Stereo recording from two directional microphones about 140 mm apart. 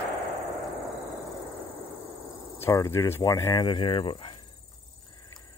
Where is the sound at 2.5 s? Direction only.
20° left (ahead or behind); by 4.4 s 40° left (ahead or behind).